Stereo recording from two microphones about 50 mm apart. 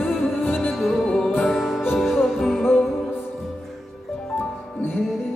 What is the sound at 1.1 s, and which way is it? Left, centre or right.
Music, centre.